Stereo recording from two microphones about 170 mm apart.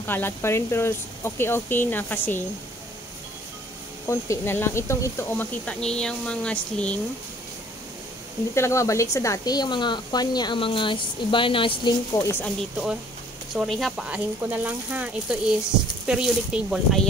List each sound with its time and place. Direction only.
0.0 s speech: 10° left (ahead or behind)
4.1 s speech: 15° left (ahead or behind)
8.5 s speech: 15° left (ahead or behind)
12.2 s speech: 15° left (ahead or behind)
13.6 s speech: centre (ahead or behind)